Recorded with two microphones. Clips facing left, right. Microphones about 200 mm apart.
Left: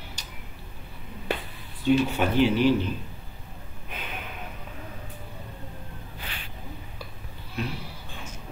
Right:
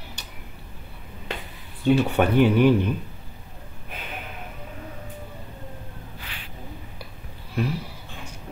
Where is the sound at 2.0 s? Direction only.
60° right (ahead or behind).